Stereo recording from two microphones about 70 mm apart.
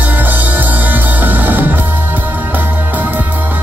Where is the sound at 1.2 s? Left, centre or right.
Right.